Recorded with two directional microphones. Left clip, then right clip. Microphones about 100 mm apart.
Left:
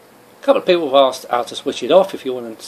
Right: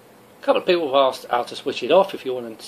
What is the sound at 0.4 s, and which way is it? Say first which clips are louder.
Speech: left 4 dB; 50° left (ahead or behind).